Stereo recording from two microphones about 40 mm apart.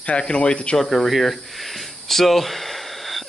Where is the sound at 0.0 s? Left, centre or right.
Left.